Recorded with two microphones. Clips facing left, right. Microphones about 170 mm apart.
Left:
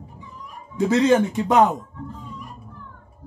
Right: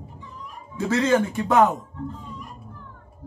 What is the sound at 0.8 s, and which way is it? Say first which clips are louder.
A man's voice: left 3 dB; 20° left (ahead or behind).